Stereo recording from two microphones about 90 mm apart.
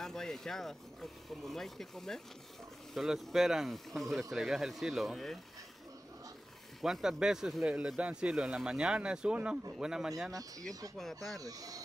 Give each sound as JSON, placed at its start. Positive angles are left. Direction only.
{"t": 0.0, "sound": "speech", "side_deg": 5}
{"t": 6.8, "sound": "speech", "side_deg": -5}
{"t": 11.3, "sound": "speech", "side_deg": -40}